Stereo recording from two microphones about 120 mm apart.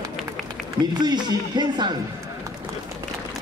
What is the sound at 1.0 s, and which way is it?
Speech, 35° right (ahead or behind).